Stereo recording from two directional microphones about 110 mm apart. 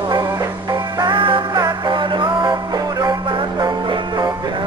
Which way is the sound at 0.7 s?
40° right (ahead or behind).